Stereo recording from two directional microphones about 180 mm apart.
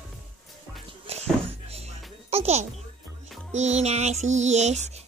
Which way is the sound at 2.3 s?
35° right (ahead or behind).